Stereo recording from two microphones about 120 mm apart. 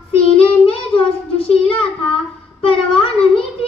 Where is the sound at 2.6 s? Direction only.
50° left (ahead or behind).